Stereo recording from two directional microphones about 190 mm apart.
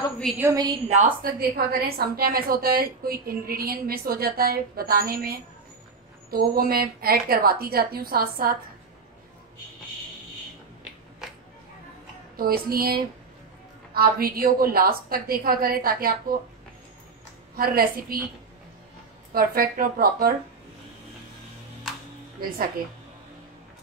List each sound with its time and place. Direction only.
0.4 s a woman's voice: 20° right (ahead or behind)
0.8 s a woman's voice: 40° right (ahead or behind)
6.3 s a woman's voice: 50° right (ahead or behind)
12.4 s a woman's voice: 50° right (ahead or behind)
17.6 s a woman's voice: 50° right (ahead or behind)
19.3 s a woman's voice: 45° right (ahead or behind)